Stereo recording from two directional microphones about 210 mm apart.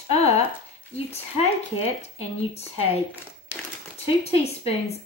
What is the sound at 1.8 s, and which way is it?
A woman's voice, 30° left (ahead or behind).